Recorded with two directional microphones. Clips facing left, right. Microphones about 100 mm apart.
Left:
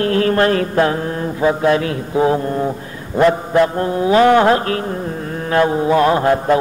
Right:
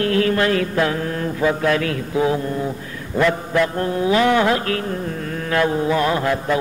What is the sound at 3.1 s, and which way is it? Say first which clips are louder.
Mantra: left 5 dB; 30° left (ahead or behind).